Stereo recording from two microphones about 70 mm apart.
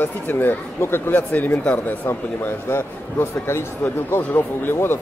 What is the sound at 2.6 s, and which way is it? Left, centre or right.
A man's voice, left.